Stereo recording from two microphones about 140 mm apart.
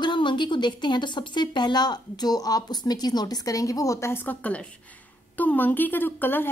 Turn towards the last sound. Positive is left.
turn(degrees=15)  # may be behind; listen again after turning